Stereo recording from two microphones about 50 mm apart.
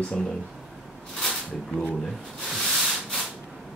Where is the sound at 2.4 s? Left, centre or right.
Centre.